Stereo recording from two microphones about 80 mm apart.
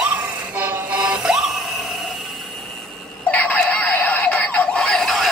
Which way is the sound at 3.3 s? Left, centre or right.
Centre.